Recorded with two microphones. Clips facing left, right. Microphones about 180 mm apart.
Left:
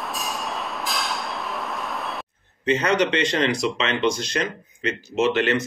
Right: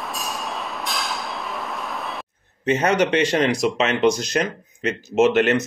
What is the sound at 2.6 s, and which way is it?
A man's voice, 50° right (ahead or behind).